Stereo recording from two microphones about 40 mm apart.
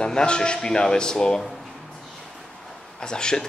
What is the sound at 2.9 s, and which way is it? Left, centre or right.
Speech, centre.